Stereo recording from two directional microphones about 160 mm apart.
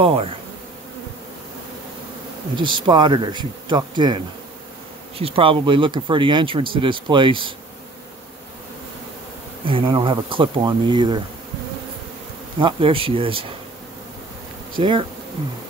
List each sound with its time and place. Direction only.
0.0 s speech: 35° right (ahead or behind)
2.5 s speech: 30° right (ahead or behind)
5.2 s speech: 35° right (ahead or behind)
9.7 s speech: 30° right (ahead or behind)
12.5 s speech: 30° right (ahead or behind)
14.7 s speech: 35° right (ahead or behind)